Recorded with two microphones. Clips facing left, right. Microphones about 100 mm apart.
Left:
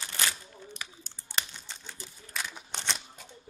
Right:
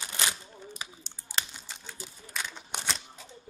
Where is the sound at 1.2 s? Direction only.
10° right (ahead or behind).